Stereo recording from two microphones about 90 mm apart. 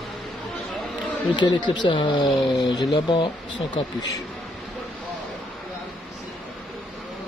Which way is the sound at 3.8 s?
75° left (ahead or behind).